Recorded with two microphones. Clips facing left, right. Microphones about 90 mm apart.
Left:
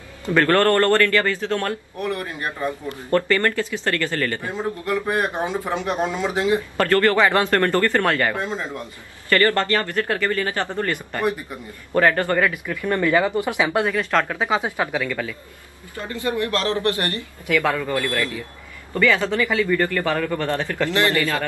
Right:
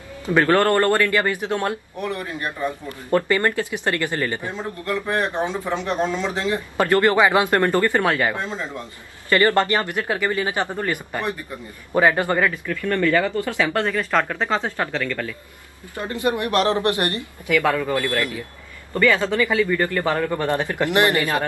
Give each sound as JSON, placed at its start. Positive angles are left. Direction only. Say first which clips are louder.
{"t": 0.3, "sound": "a man's voice", "louder": "even", "side_deg": -10}
{"t": 4.5, "sound": "a man's voice", "louder": "left 2 dB", "side_deg": 15}
{"t": 6.8, "sound": "a man's voice", "louder": "right 2 dB", "side_deg": -15}
{"t": 8.4, "sound": "a man's voice", "louder": "left 1 dB", "side_deg": 10}
{"t": 9.3, "sound": "a man's voice", "louder": "right 1 dB", "side_deg": -20}
{"t": 12.6, "sound": "a man's voice", "louder": "even", "side_deg": 15}
{"t": 13.9, "sound": "a man's voice", "louder": "even", "side_deg": 0}
{"t": 16.0, "sound": "a man's voice", "louder": "right 2 dB", "side_deg": -20}